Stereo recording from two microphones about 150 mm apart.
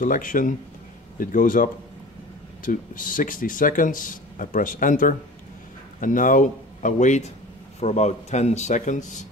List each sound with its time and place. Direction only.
0.0 s speech: 65° left (ahead or behind)